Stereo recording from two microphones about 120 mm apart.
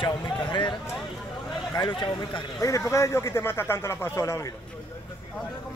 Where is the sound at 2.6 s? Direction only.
25° left (ahead or behind).